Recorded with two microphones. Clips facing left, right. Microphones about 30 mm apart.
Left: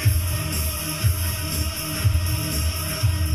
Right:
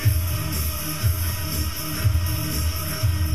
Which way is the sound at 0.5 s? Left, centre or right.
Centre.